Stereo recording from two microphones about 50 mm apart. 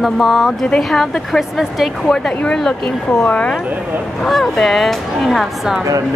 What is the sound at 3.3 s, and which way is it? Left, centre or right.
Speech, left.